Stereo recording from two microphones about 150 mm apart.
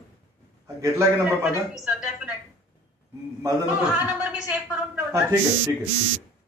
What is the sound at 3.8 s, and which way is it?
A woman's voice, 5° right (ahead or behind).